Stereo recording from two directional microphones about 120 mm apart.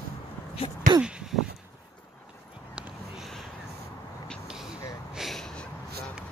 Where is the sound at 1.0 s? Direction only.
5° right (ahead or behind).